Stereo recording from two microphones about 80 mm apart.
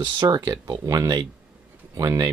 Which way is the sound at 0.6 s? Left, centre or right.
Right.